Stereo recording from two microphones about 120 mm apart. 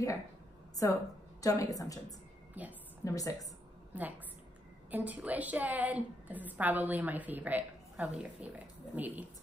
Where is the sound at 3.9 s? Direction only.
15° right (ahead or behind).